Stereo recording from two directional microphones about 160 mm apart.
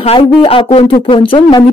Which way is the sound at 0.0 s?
35° left (ahead or behind).